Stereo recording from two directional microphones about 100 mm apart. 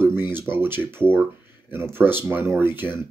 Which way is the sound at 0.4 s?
25° right (ahead or behind).